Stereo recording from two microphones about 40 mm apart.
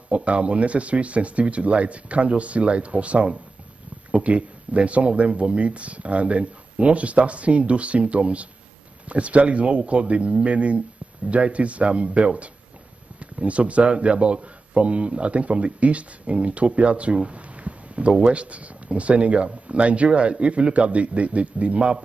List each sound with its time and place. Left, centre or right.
0.1 s speech: right